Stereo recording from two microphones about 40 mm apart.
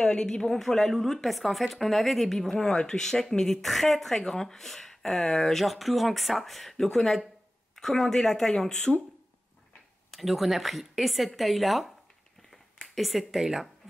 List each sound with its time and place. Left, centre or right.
0.0 s a woman's voice: left
10.1 s speech: centre